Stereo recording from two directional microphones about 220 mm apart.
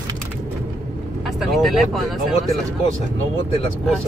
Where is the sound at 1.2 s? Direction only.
Centre (ahead or behind).